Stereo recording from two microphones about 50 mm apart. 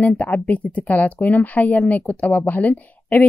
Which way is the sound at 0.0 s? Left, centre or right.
Left.